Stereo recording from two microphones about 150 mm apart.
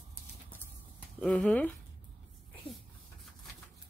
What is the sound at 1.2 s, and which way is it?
Speech, 5° left (ahead or behind).